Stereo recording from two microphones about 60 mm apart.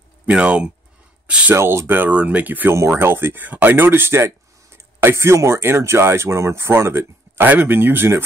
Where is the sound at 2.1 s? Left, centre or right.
Right.